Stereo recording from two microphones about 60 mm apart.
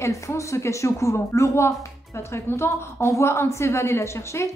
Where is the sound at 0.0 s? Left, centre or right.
Left.